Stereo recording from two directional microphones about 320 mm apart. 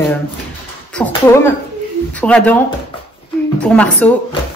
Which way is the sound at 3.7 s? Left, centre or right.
Centre.